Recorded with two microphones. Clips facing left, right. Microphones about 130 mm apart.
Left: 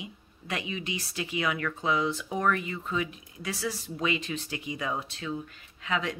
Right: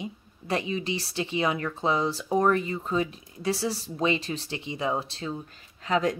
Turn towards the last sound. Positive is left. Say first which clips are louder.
# right 6 dB
turn(degrees=-40)  # may be behind; listen again after turning